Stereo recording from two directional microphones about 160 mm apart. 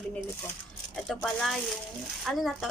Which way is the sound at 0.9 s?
Centre (ahead or behind).